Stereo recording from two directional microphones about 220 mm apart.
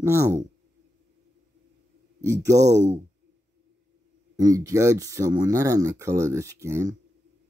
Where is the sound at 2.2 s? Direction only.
15° right (ahead or behind).